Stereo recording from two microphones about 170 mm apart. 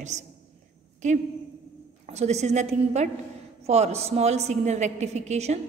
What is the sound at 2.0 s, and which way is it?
A woman's voice, 40° right (ahead or behind).